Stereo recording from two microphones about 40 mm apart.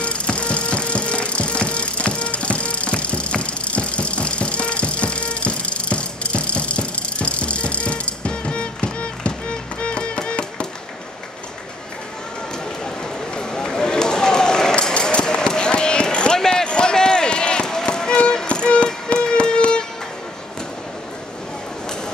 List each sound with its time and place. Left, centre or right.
0.0 s music: left
13.4 s run: left
16.3 s basketball bounce: centre
18.5 s music: left